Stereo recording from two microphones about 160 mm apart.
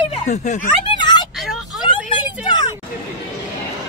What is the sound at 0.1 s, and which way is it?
Speech, 45° left (ahead or behind).